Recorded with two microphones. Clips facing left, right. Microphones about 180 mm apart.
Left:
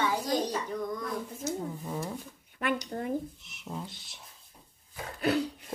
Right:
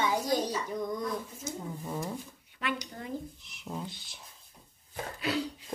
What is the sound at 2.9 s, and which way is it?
Speech, 45° left (ahead or behind).